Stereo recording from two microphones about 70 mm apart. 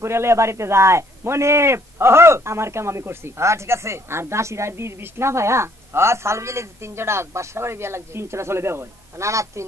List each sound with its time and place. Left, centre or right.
0.0 s a man's voice: right